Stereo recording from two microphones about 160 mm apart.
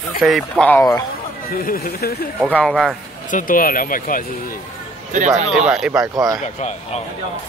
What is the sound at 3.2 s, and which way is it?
Speech, 55° left (ahead or behind).